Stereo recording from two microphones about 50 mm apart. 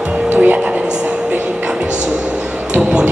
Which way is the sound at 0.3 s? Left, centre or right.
Right.